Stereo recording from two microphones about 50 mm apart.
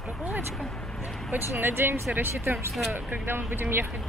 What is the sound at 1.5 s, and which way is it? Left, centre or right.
Speech, right.